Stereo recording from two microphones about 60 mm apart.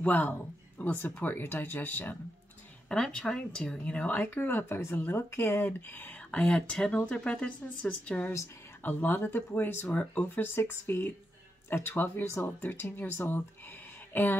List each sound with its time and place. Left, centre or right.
0.0 s speech: left
2.9 s speech: centre
8.8 s speech: left
9.8 s speech: left
10.4 s speech: left
13.3 s a sound: left